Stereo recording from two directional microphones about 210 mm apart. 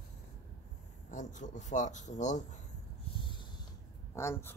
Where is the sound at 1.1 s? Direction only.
35° left (ahead or behind).